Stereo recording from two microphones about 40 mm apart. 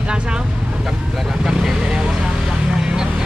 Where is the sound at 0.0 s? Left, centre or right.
Right.